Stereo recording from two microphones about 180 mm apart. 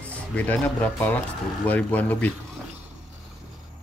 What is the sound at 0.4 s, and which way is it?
Speech, 10° left (ahead or behind).